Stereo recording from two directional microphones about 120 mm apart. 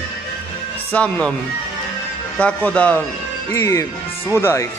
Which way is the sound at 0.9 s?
10° left (ahead or behind).